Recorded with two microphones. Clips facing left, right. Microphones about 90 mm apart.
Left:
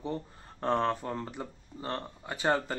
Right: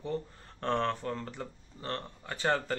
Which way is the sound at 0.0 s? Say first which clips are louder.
Even; 15° left (ahead or behind).